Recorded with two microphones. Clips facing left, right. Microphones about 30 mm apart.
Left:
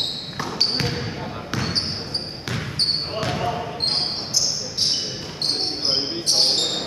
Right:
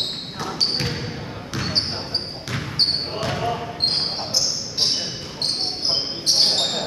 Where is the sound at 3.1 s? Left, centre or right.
Centre.